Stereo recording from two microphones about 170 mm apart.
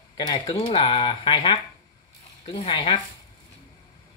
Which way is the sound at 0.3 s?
30° left (ahead or behind).